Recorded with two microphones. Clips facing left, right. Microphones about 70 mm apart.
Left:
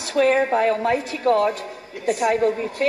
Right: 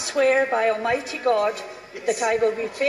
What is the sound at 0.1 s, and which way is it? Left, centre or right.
Speech, centre.